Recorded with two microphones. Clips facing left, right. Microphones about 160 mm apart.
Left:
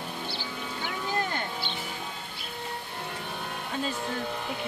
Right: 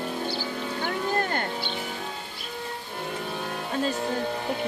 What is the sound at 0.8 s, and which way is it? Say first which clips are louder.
Boat: right 4 dB; 55° right (ahead or behind).